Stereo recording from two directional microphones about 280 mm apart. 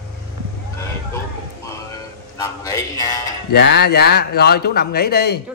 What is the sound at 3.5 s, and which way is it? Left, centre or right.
Speech, left.